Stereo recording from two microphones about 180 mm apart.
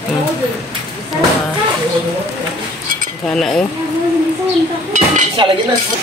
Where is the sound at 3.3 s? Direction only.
5° left (ahead or behind).